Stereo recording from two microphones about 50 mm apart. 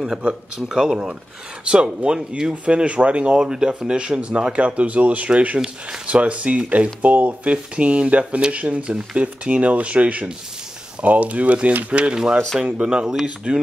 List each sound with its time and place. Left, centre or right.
0.6 s speech: centre
2.5 s speech: right
12.0 s speech: centre